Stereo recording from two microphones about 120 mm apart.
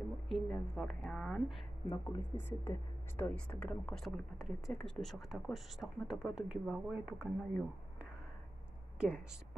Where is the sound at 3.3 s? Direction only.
5° left (ahead or behind); by 7.3 s 10° right (ahead or behind).